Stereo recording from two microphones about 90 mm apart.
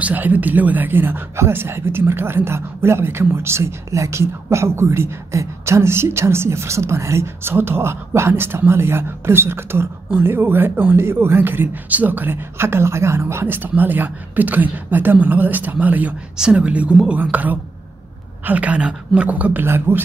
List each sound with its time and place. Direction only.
0.0 s speech: 20° right (ahead or behind)